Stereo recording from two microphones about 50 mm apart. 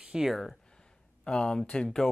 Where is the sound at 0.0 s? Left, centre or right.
Centre.